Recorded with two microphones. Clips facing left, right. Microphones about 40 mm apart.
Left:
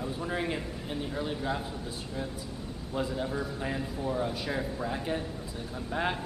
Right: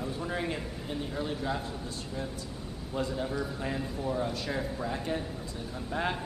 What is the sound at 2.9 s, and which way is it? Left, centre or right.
A man's voice, centre.